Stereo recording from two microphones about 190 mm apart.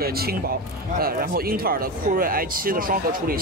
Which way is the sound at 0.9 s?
50° right (ahead or behind).